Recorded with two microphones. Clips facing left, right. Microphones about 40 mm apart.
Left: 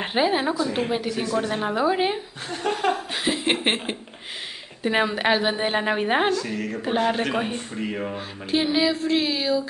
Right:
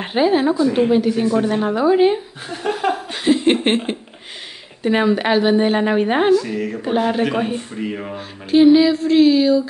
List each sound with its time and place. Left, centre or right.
0.0 s a woman's voice: centre
1.2 s a woman's voice: centre
1.5 s a woman's voice: centre